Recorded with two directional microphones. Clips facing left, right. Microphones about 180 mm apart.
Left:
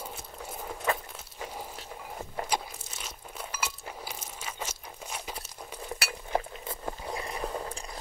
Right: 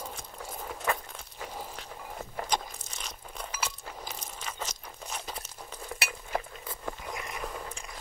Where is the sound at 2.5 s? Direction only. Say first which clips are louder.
Right 2 dB; 5° left (ahead or behind).